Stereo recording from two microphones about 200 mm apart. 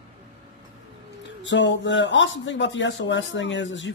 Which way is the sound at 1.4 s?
65° left (ahead or behind).